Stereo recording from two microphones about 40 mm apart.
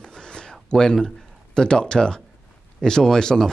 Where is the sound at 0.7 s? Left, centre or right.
Left.